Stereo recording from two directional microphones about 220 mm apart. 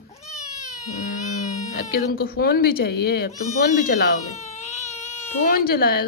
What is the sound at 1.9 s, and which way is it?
Speech, 45° left (ahead or behind).